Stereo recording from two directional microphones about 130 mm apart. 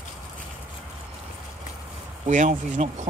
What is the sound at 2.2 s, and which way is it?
Speech, 70° right (ahead or behind).